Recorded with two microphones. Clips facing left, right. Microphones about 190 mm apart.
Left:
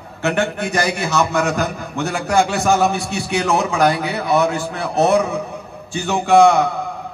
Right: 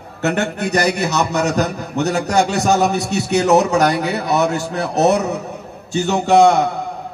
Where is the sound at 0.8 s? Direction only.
20° right (ahead or behind).